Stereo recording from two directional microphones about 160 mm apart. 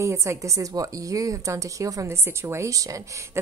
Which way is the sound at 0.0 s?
15° right (ahead or behind).